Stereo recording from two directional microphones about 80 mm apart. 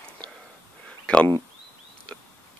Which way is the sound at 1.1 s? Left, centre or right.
Centre.